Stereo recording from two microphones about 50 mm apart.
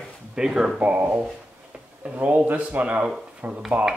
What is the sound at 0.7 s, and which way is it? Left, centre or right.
Speech, right.